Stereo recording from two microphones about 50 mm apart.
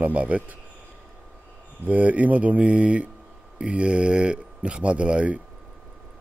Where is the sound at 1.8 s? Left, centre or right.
Right.